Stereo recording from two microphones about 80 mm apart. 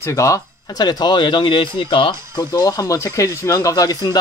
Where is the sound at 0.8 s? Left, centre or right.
Left.